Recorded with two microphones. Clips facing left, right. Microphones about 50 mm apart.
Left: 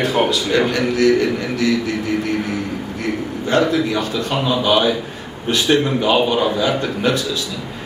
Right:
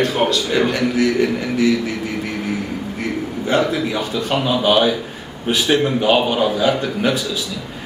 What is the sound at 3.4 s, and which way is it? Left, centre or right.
Speech, centre.